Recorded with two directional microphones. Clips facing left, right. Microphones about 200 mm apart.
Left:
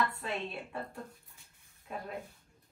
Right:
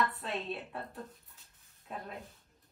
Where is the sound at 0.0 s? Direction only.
Centre (ahead or behind).